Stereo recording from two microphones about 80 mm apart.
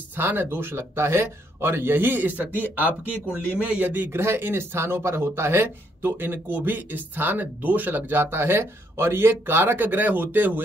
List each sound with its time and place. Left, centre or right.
0.1 s speech: right
3.5 s speech: centre